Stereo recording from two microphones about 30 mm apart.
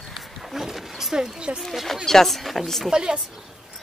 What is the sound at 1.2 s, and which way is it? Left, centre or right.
Speech, right.